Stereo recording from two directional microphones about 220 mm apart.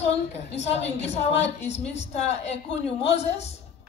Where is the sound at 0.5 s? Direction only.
30° left (ahead or behind).